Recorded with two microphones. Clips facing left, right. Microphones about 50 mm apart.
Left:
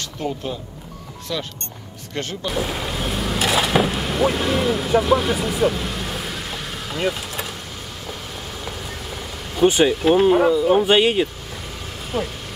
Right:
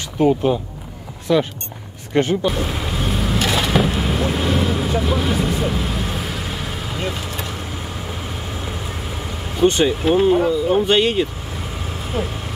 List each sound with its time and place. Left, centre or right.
0.2 s speech: right
2.4 s vehicle: centre
8.6 s vehicle: centre
9.6 s speech: centre
12.1 s speech: centre